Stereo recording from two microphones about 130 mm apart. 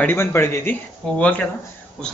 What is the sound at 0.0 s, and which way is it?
A man's voice, 20° left (ahead or behind).